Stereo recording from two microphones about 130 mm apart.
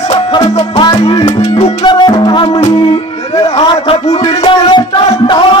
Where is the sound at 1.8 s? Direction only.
35° left (ahead or behind).